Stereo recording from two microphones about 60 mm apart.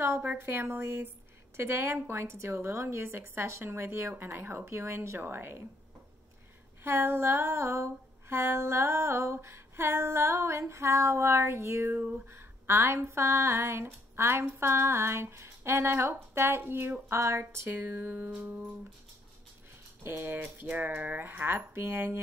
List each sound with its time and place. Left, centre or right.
0.2 s speech: right
0.7 s a sound: right
5.2 s speech: right
6.8 s a sound: right
17.6 s speech: right
20.0 s speech: right